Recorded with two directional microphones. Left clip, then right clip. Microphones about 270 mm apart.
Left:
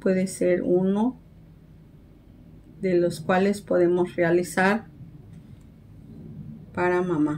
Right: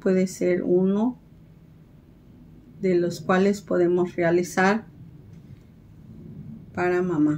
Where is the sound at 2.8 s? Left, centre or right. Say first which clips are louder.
Even; centre.